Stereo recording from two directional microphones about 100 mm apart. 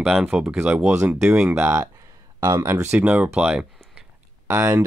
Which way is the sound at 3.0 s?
15° right (ahead or behind).